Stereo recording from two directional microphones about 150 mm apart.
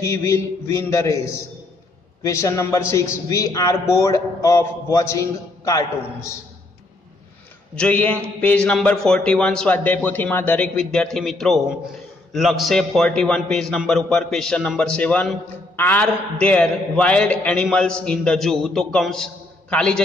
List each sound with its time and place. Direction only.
0.0 s a man's voice: 20° left (ahead or behind)
2.2 s a man's voice: 20° left (ahead or behind)
7.7 s a man's voice: 10° left (ahead or behind)